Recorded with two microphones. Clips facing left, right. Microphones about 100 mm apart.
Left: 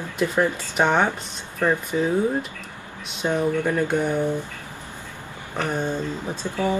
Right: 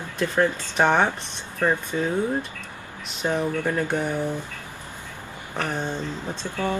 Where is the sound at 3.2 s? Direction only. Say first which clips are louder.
Left 2 dB; centre (ahead or behind).